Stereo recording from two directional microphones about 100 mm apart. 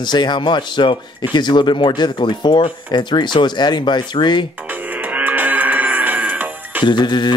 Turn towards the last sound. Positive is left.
turn(degrees=50)  # may be behind; listen again after turning